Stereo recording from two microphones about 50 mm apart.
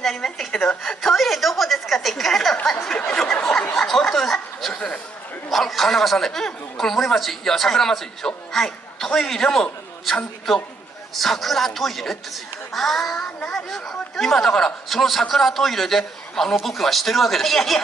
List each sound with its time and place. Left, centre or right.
0.0 s a woman's voice: centre
2.6 s a sound: centre
3.7 s chatter: centre
5.5 s a man's voice: centre
13.4 s a man's voice: centre